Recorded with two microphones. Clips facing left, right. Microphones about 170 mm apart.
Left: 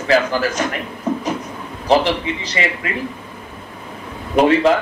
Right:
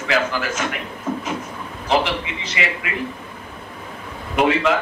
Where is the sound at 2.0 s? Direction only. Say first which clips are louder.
Left 4 dB; 35° left (ahead or behind).